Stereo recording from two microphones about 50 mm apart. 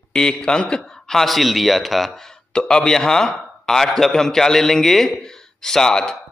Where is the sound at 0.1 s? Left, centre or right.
Centre.